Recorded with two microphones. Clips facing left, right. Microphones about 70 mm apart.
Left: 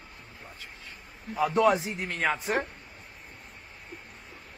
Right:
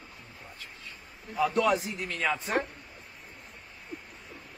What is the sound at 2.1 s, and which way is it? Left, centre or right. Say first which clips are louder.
Speech: left 2 dB; left.